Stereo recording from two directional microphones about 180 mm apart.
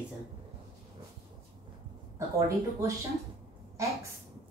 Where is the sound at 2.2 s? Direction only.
15° right (ahead or behind).